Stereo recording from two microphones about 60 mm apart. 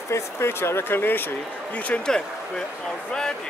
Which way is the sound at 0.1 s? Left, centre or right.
Left.